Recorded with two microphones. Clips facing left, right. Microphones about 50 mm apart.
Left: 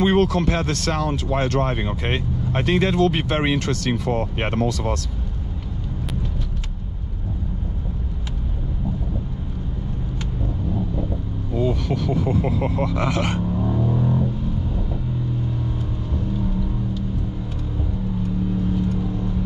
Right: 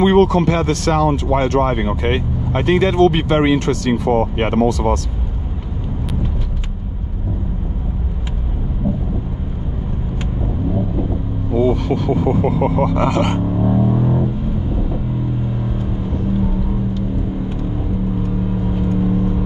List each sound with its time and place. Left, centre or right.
0.0 s speech: right
11.7 s speech: right
13.4 s music: right
18.7 s vehicle: right